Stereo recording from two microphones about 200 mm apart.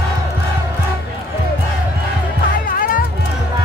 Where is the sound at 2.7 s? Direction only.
45° left (ahead or behind).